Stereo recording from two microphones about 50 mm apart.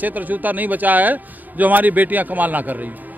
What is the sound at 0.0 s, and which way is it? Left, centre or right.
A man's voice, right.